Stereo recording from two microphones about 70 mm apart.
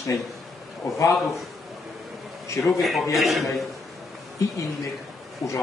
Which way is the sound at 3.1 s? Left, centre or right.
Centre.